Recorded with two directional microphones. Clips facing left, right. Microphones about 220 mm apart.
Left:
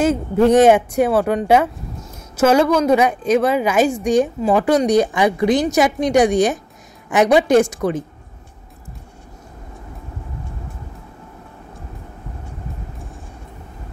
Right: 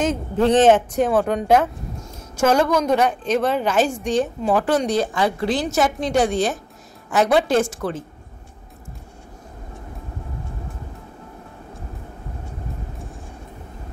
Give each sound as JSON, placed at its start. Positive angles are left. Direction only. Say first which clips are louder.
{"t": 0.0, "sound": "a woman's voice", "louder": "left 4 dB", "side_deg": 10}